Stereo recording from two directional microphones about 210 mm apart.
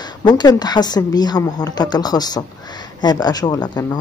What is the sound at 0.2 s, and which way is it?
Speech, 20° left (ahead or behind).